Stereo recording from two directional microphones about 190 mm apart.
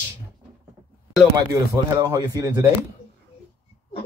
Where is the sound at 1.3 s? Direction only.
20° right (ahead or behind).